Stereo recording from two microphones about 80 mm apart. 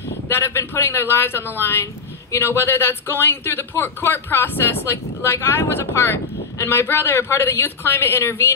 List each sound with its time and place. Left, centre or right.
0.3 s speech: left